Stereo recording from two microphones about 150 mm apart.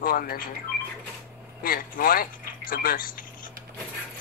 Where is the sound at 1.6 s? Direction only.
70° left (ahead or behind).